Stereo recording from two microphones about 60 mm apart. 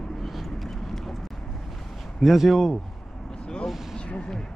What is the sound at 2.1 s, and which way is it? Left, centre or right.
Speech, centre.